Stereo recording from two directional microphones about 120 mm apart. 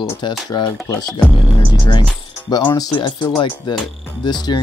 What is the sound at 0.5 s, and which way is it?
Speech, 35° left (ahead or behind).